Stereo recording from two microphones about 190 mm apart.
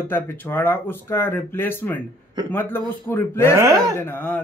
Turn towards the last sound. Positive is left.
turn(degrees=10)  # may be behind; listen again after turning